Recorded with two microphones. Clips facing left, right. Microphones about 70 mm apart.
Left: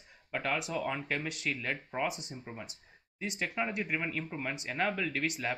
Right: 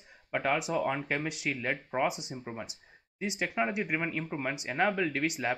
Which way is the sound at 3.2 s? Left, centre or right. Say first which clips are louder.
Right 4 dB; centre.